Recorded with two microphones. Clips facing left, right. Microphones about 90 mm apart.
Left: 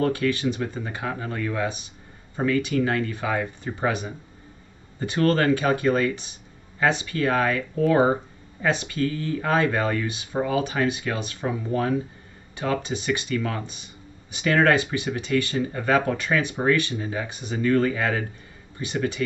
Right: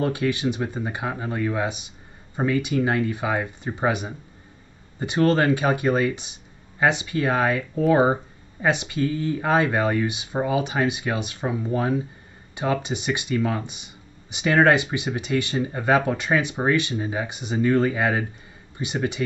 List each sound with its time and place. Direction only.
0.0 s speech: 15° right (ahead or behind)